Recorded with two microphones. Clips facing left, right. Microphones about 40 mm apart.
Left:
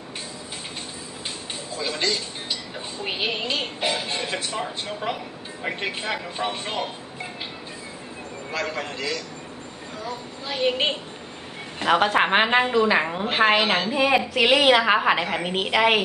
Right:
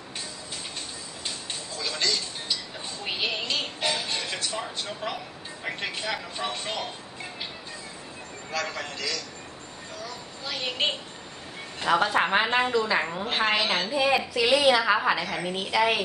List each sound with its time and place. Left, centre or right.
1.8 s tick-tock: centre
8.5 s a man's voice: centre
10.4 s a man's voice: centre
11.8 s a woman's voice: left
13.0 s a man's voice: left
14.3 s a woman's voice: left